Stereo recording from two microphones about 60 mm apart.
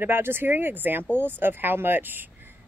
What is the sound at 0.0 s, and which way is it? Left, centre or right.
Speech, right.